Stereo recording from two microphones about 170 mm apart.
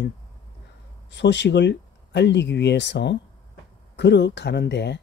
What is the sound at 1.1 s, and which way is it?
Speech, 90° left.